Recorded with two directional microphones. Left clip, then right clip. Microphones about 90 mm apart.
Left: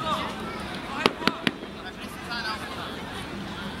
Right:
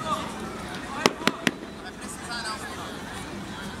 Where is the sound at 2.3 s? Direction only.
15° right (ahead or behind).